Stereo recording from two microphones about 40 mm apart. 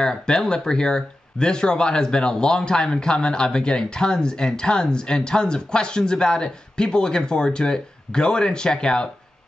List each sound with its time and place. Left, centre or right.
0.0 s speech: centre